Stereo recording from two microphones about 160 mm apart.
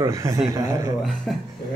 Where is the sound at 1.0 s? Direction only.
Centre (ahead or behind).